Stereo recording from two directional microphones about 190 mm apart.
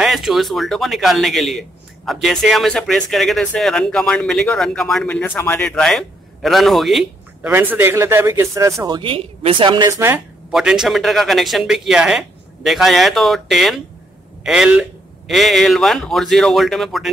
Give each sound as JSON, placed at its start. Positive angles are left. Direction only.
{"t": 0.0, "sound": "speech", "side_deg": 0}
{"t": 10.5, "sound": "speech", "side_deg": -5}